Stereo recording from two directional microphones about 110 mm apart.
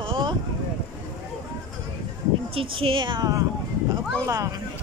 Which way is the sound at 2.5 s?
55° right (ahead or behind).